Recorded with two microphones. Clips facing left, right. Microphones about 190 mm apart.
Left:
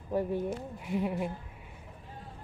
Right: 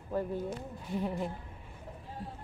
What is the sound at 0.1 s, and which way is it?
A woman's voice, 15° left (ahead or behind).